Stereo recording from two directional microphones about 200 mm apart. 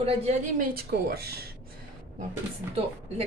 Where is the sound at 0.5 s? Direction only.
50° right (ahead or behind).